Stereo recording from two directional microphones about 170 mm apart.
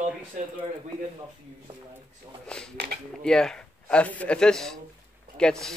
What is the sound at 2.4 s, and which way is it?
A man's voice, 5° left (ahead or behind).